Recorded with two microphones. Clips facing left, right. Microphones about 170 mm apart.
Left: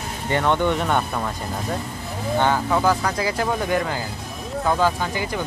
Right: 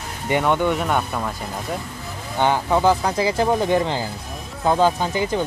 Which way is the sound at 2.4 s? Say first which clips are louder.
Right 3 dB; 20° right (ahead or behind).